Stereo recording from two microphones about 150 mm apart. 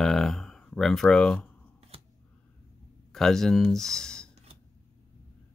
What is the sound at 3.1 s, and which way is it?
Speech, 5° left (ahead or behind).